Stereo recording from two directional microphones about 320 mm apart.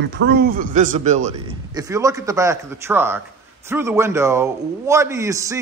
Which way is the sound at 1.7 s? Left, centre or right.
Centre.